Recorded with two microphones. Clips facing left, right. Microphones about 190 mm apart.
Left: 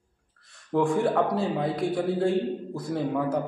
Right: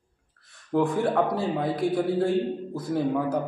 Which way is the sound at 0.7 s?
5° right (ahead or behind).